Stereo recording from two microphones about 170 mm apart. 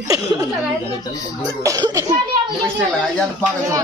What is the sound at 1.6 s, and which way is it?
Speech, 20° right (ahead or behind).